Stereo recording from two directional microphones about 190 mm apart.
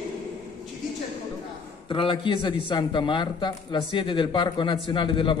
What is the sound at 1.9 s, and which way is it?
A man's voice, 25° left (ahead or behind).